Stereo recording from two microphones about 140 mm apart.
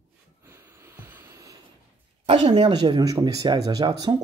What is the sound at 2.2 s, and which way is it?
Speech, 40° right (ahead or behind).